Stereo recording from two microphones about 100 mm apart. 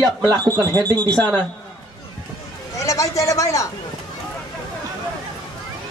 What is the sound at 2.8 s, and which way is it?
Speech, 30° left (ahead or behind).